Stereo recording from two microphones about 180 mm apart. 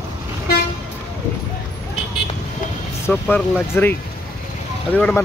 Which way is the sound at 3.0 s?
10° left (ahead or behind).